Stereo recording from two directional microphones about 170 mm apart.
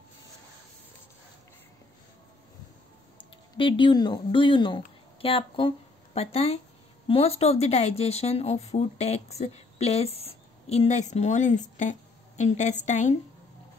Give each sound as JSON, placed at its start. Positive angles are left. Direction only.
{"t": 3.2, "sound": "speech", "side_deg": 30}